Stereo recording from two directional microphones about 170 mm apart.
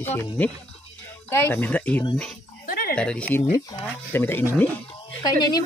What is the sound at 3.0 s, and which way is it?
Speech, 5° left (ahead or behind).